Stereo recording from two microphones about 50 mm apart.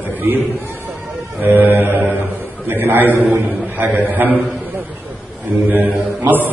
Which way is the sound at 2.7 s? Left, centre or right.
Right.